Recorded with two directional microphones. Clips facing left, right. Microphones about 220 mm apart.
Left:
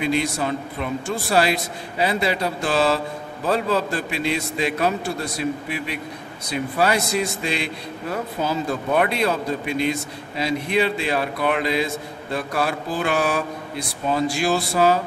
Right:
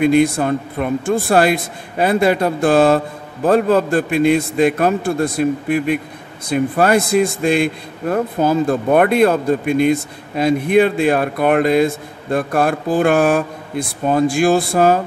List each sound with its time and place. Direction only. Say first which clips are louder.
0.0 s a man's voice: right 9 dB; 50° right (ahead or behind)